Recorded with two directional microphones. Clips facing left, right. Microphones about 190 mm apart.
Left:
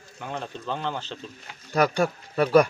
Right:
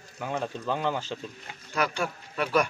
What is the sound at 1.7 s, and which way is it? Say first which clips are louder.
Speech: left 7 dB; 40° left (ahead or behind).